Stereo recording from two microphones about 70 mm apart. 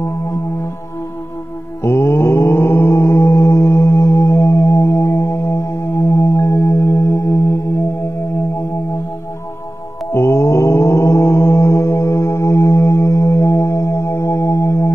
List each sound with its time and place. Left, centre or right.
1.8 s mantra: left
4.8 s music: left
5.9 s singing bowl: left
10.1 s mantra: left